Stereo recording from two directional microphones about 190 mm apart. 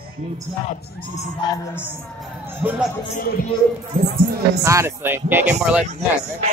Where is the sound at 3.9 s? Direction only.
45° right (ahead or behind).